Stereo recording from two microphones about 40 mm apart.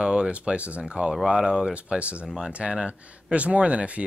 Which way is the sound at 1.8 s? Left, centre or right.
Right.